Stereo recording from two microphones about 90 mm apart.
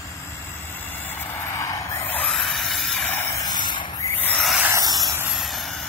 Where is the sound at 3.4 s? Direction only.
60° left (ahead or behind).